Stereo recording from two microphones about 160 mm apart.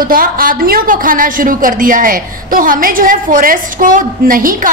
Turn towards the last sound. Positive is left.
turn(degrees=-60)  # may be behind; listen again after turning